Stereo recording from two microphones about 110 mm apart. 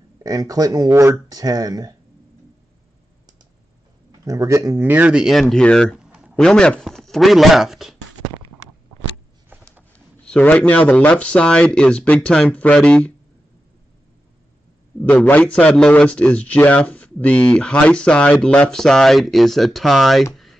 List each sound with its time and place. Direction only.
0.2 s speech: 35° right (ahead or behind)
4.2 s speech: 30° right (ahead or behind)
4.8 s speech: 15° right (ahead or behind); by 5.9 s 10° left (ahead or behind)
5.9 s a sound: 10° right (ahead or behind)
6.3 s speech: 10° left (ahead or behind)
9.9 s a man's voice: 10° left (ahead or behind)
15.0 s a man's voice: 5° left (ahead or behind)